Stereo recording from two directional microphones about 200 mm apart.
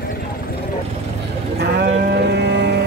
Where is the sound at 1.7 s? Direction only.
55° right (ahead or behind).